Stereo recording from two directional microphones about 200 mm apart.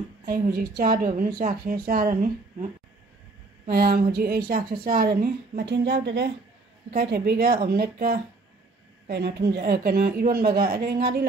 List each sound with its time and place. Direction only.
0.2 s a woman's voice: 45° right (ahead or behind)